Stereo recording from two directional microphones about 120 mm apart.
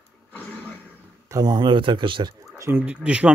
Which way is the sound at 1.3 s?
35° right (ahead or behind).